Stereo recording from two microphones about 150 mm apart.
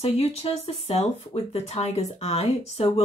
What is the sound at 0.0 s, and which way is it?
Speech, 45° left (ahead or behind).